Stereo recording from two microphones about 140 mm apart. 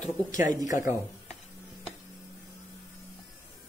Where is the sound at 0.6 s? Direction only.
20° right (ahead or behind).